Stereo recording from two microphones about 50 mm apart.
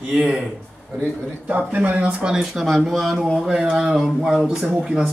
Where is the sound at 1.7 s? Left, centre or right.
Right.